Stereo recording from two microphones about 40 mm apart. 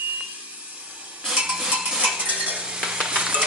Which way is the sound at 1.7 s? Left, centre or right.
Right.